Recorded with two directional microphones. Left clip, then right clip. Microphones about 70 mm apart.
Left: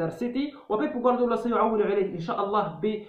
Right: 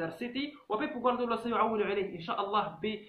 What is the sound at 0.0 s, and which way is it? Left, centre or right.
A man's voice, left.